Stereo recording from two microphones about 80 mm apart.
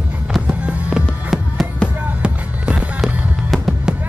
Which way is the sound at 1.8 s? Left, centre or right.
Centre.